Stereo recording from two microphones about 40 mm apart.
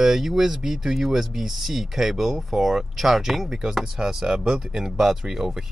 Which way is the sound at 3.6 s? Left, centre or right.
Centre.